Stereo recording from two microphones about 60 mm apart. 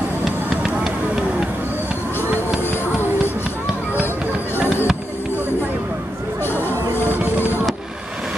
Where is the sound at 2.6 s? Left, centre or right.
Left.